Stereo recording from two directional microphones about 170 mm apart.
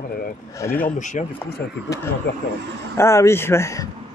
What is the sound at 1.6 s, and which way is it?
Speech, 70° left (ahead or behind).